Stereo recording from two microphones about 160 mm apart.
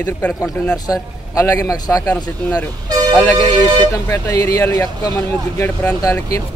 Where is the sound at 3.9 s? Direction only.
20° left (ahead or behind).